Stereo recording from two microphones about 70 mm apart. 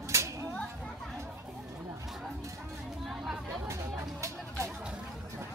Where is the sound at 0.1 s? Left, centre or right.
Right.